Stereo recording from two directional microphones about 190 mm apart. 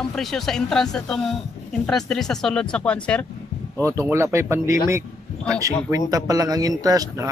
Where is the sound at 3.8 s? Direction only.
15° right (ahead or behind).